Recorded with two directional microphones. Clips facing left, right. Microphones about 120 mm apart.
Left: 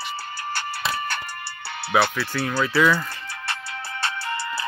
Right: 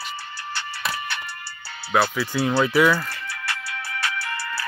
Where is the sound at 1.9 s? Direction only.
5° right (ahead or behind).